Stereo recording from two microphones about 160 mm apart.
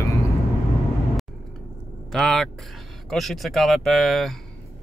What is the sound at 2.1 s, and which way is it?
A man's voice, centre (ahead or behind).